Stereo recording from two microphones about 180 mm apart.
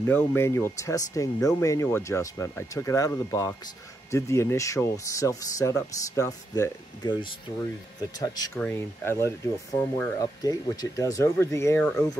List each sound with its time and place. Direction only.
0.0 s speech: 10° left (ahead or behind)
8.5 s speech: 10° left (ahead or behind)
10.2 s speech: 20° left (ahead or behind)